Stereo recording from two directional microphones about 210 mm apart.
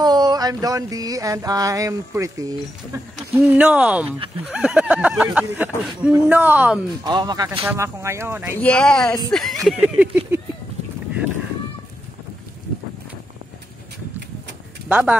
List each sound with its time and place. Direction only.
0.0 s speech: 20° right (ahead or behind)
7.1 s speech: 20° right (ahead or behind)
8.5 s speech: 5° left (ahead or behind)
14.9 s speech: 5° right (ahead or behind)